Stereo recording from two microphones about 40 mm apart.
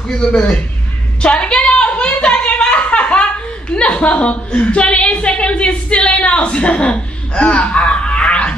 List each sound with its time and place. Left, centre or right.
0.3 s a woman's voice: centre
1.2 s a sound: left
3.7 s a woman's voice: left